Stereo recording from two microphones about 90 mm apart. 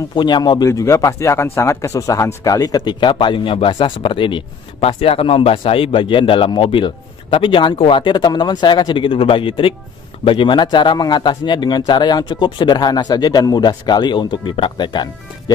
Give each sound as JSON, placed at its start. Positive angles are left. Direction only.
{"t": 0.1, "sound": "speech", "side_deg": 55}
{"t": 0.7, "sound": "speech", "side_deg": 30}
{"t": 4.8, "sound": "speech", "side_deg": 90}
{"t": 10.2, "sound": "speech", "side_deg": 65}